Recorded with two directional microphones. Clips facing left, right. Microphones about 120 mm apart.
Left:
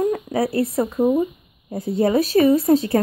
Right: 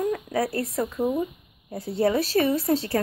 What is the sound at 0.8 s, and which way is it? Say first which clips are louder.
Speech: left 6 dB; 35° left (ahead or behind).